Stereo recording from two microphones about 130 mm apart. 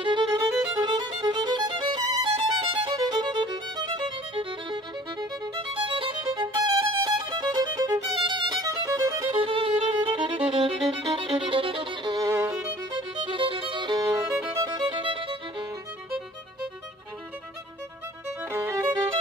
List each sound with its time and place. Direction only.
0.0 s music: 35° right (ahead or behind)
5.6 s violin: 45° right (ahead or behind)
9.4 s violin: 45° right (ahead or behind); by 12.5 s 25° right (ahead or behind)
12.9 s music: 40° right (ahead or behind)
14.0 s music: 25° right (ahead or behind); by 15.3 s 40° right (ahead or behind)
18.5 s music: 20° right (ahead or behind)